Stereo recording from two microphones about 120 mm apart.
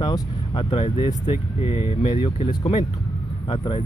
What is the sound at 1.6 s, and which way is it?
Speech, 55° left (ahead or behind).